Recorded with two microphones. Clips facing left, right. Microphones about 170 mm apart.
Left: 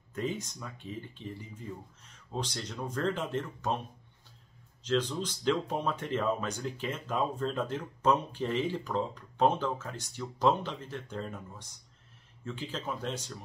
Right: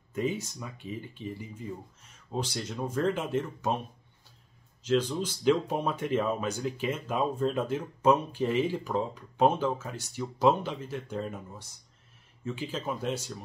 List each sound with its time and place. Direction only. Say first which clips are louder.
0.1 s speech: right 4 dB; 10° right (ahead or behind)
4.8 s speech: right 3 dB; 10° right (ahead or behind)